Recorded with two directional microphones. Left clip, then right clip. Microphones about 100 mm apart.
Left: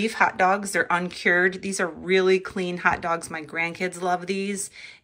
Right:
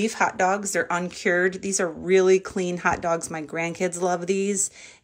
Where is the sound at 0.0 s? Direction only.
30° right (ahead or behind).